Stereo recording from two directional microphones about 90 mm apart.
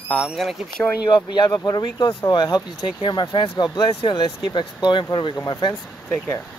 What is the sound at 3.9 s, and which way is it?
Speech, 80° left.